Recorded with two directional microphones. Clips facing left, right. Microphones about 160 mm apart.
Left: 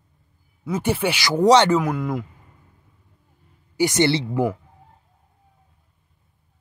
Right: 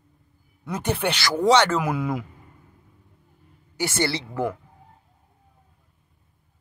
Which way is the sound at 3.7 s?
15° left (ahead or behind).